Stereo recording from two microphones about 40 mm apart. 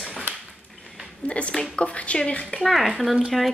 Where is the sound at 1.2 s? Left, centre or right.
Left.